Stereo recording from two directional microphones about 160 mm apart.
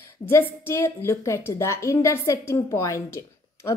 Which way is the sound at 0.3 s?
15° left (ahead or behind).